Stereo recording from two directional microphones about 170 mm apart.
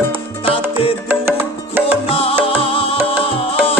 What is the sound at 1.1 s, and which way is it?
Music, 10° right (ahead or behind).